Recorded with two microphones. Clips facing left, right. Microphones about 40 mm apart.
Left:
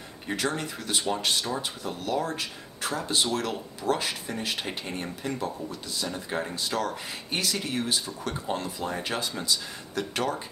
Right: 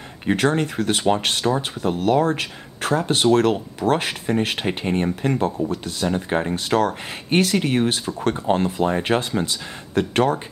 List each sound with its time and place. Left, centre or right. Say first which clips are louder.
0.3 s speech: right 10 dB; right